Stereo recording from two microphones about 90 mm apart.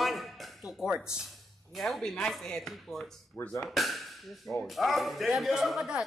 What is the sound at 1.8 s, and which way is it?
A man's voice, 5° left (ahead or behind).